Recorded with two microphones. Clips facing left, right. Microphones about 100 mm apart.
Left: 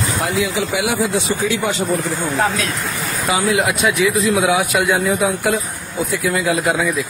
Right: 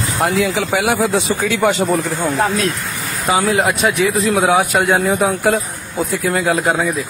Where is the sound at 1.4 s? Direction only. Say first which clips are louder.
Even; 70° right (ahead or behind).